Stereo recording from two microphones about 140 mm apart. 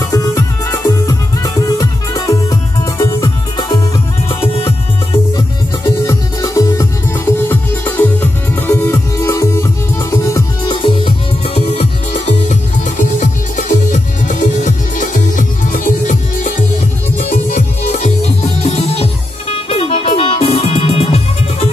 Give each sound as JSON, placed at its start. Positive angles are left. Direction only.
{"t": 0.1, "sound": "music", "side_deg": 25}
{"t": 5.9, "sound": "music", "side_deg": 25}
{"t": 10.7, "sound": "music", "side_deg": 35}
{"t": 12.3, "sound": "music", "side_deg": 60}
{"t": 17.2, "sound": "music", "side_deg": 55}